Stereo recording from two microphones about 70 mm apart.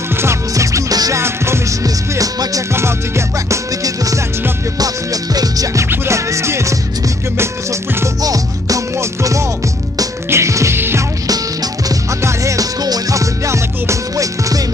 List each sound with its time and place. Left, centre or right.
0.2 s music: right
1.1 s music: right
2.7 s music: right
3.8 s music: right
5.9 s music: right
8.2 s music: right
11.2 s music: right
12.2 s music: right
12.8 s music: right